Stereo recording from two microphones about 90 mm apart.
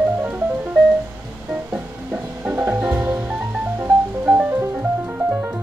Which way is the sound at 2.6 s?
15° right (ahead or behind).